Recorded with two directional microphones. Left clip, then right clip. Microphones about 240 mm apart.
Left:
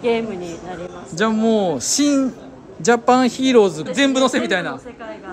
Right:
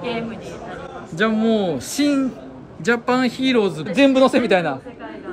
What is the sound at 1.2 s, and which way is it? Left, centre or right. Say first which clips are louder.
A man's voice: left 1 dB; centre.